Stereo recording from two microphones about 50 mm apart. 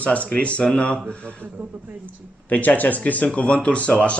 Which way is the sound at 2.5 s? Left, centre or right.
Left.